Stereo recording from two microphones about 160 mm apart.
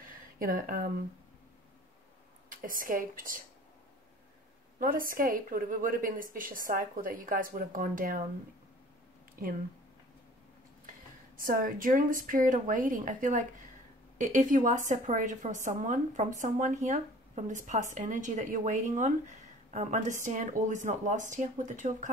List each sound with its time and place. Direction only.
0.1 s speech: 60° right (ahead or behind)
2.5 s a woman's voice: 60° right (ahead or behind)
4.7 s a woman's voice: 60° right (ahead or behind)
9.4 s a woman's voice: 60° right (ahead or behind)
11.3 s a woman's voice: 60° right (ahead or behind)